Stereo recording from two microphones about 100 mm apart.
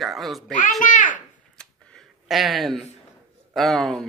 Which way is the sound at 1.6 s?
10° left (ahead or behind).